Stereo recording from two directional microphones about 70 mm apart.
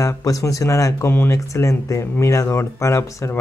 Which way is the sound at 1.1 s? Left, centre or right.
Left.